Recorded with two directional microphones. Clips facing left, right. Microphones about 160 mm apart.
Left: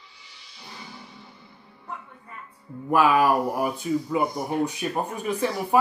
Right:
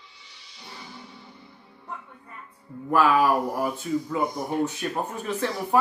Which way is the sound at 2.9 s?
10° left (ahead or behind).